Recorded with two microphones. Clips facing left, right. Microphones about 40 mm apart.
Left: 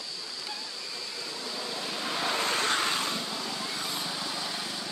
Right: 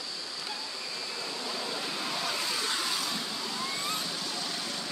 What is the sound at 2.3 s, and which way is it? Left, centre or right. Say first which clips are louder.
Vehicle: left 8 dB; left.